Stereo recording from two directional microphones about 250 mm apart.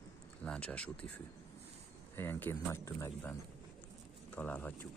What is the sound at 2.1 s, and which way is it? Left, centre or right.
Speech, centre.